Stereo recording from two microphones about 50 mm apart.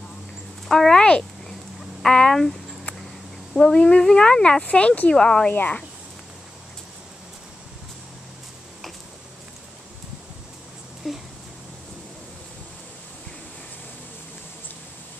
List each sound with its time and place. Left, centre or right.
0.7 s a sound: centre
2.0 s speech: centre
3.7 s speech: centre
5.1 s speech: centre
5.5 s speech: left
11.0 s a sound: centre